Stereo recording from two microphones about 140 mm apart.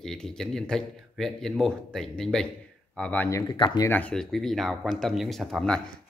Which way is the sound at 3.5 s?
35° left (ahead or behind).